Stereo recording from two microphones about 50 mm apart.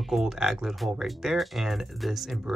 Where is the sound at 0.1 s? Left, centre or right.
Centre.